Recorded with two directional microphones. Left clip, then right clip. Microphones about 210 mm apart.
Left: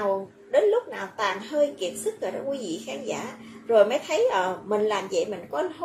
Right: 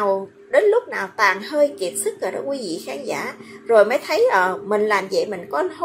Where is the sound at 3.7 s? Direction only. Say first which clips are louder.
Right 5 dB; 15° right (ahead or behind).